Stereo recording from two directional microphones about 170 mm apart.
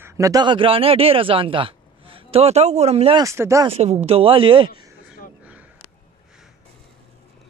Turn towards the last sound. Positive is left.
turn(degrees=-10)  # may be behind; listen again after turning